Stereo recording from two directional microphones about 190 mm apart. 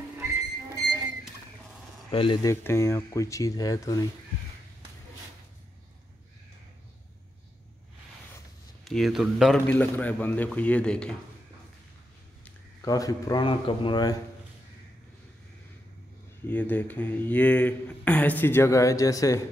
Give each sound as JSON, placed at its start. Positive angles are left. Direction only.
{"t": 2.0, "sound": "speech", "side_deg": 30}
{"t": 8.8, "sound": "a man's voice", "side_deg": 0}
{"t": 12.8, "sound": "speech", "side_deg": 20}
{"t": 16.4, "sound": "speech", "side_deg": 10}